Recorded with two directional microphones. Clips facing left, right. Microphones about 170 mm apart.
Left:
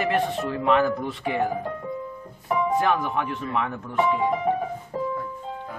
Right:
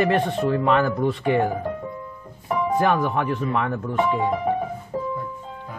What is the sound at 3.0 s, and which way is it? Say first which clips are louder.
Speech: right 4 dB; 40° right (ahead or behind).